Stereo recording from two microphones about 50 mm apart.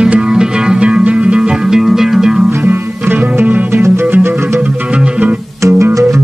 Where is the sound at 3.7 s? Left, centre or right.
Right.